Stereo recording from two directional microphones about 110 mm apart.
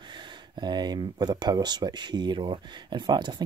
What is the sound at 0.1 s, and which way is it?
Speech, 45° right (ahead or behind).